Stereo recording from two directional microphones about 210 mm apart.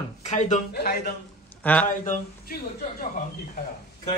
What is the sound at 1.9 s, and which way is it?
Speech, 40° left (ahead or behind).